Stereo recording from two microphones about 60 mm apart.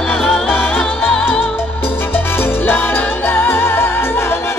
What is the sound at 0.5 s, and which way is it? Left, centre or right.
Music, left.